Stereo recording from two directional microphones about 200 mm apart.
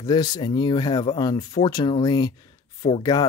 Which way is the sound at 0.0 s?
20° left (ahead or behind).